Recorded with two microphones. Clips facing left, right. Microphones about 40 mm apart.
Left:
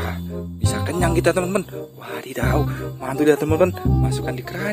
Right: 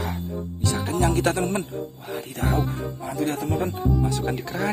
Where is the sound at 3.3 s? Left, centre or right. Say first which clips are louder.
Left 13 dB; left.